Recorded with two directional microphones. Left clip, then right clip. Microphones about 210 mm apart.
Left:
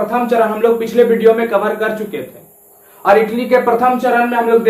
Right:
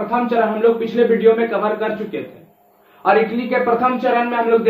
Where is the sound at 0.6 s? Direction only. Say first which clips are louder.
Left 3 dB; 15° left (ahead or behind).